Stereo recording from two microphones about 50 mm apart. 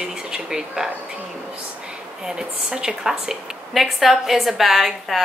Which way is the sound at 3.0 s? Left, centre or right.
Centre.